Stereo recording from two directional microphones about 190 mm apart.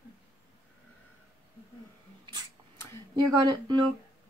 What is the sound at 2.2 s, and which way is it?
Cat, 20° right (ahead or behind).